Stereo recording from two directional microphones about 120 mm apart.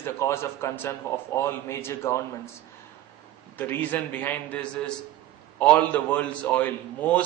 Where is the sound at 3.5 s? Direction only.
15° left (ahead or behind).